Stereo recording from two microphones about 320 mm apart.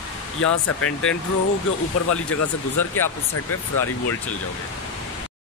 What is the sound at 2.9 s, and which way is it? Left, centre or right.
Speech, left.